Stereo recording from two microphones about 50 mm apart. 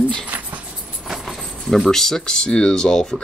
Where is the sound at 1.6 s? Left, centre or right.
Centre.